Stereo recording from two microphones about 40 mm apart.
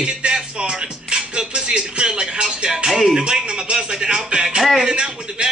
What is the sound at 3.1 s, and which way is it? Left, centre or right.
Speech, right.